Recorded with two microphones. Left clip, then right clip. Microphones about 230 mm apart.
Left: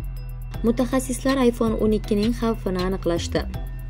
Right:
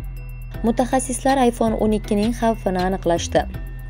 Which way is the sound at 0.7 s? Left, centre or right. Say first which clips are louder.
Right 3 dB; centre.